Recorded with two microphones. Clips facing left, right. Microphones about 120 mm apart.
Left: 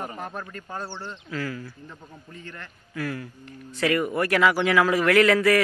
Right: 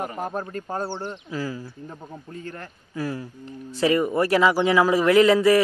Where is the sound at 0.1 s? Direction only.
35° right (ahead or behind).